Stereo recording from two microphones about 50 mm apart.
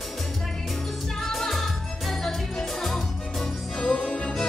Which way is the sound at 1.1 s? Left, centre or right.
Centre.